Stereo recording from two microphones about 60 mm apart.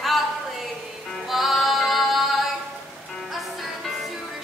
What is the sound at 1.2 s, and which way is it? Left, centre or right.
Music, centre.